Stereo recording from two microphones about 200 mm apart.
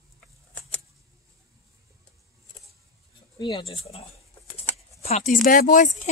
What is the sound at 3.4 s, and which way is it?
Speech, 25° left (ahead or behind).